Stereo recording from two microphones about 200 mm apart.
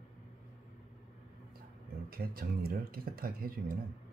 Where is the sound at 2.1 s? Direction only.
50° right (ahead or behind).